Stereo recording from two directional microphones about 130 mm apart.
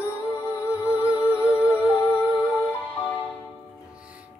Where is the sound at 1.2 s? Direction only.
20° left (ahead or behind).